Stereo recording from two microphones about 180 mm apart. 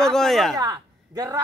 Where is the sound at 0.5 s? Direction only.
20° right (ahead or behind).